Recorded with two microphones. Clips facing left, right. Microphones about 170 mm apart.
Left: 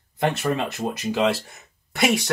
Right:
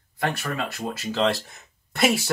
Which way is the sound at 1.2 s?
Centre (ahead or behind).